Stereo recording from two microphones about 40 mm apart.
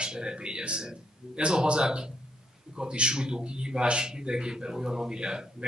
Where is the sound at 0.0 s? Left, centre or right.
Right.